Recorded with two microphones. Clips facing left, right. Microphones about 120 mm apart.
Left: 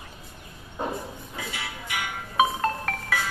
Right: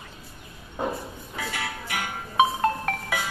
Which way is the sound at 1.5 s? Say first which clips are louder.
Right 4 dB; 50° right (ahead or behind).